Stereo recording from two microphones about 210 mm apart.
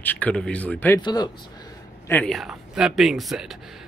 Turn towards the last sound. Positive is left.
turn(degrees=0)  # may be behind; listen again after turning